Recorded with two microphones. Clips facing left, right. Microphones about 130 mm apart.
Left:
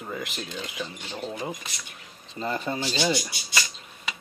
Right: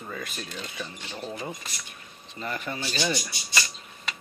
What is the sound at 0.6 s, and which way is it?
Speech, 15° left (ahead or behind).